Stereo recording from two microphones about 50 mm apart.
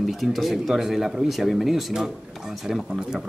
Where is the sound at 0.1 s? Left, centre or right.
Centre.